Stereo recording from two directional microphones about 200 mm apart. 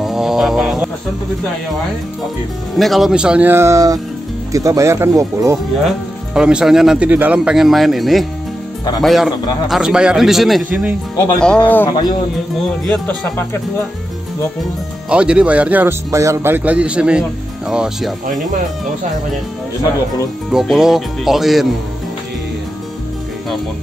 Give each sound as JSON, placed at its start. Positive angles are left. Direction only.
{"t": 0.0, "sound": "a sound", "side_deg": 0}
{"t": 2.7, "sound": "speech", "side_deg": 0}
{"t": 5.9, "sound": "speech", "side_deg": -5}
{"t": 11.3, "sound": "speech", "side_deg": 5}
{"t": 15.0, "sound": "speech", "side_deg": -5}
{"t": 20.5, "sound": "speech", "side_deg": 0}